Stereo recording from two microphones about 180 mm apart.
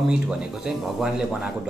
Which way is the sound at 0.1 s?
5° right (ahead or behind).